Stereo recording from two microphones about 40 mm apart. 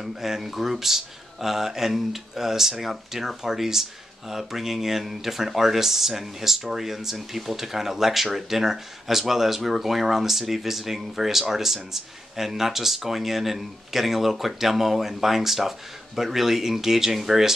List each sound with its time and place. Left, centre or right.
0.0 s speech: centre